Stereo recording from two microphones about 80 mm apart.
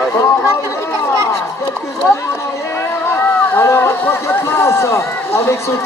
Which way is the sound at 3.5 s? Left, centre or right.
Left.